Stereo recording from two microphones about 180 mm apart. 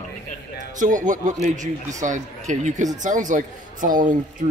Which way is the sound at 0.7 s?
45° right (ahead or behind).